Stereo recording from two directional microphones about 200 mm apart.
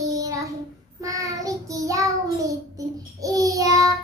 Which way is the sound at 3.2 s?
15° right (ahead or behind).